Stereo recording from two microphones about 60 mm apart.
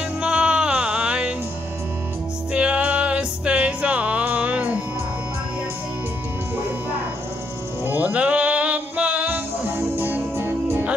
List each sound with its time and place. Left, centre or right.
0.2 s music: centre
2.5 s music: centre
7.8 s music: right
9.3 s music: right